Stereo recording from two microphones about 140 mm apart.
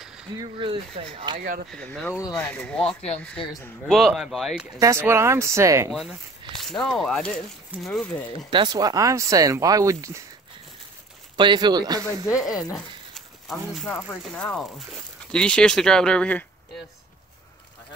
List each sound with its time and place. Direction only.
0.4 s speech: 35° right (ahead or behind)
1.4 s speech: 75° right (ahead or behind)
1.7 s speech: 5° left (ahead or behind)
3.8 s speech: 5° right (ahead or behind)
4.7 s speech: 20° right (ahead or behind)
5.9 s speech: centre (ahead or behind)
8.5 s speech: 30° right (ahead or behind)
11.3 s speech: 35° right (ahead or behind)
12.3 s speech: 5° right (ahead or behind)